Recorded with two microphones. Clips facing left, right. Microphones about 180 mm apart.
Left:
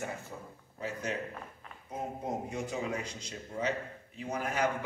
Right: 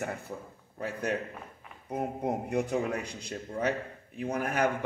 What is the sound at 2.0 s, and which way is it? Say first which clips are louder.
A man's voice: right 5 dB; 65° right (ahead or behind).